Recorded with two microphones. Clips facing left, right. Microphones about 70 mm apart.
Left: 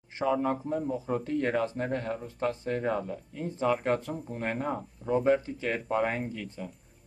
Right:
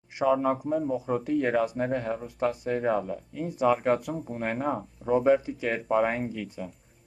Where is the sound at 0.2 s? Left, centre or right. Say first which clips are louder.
Right 4 dB; centre.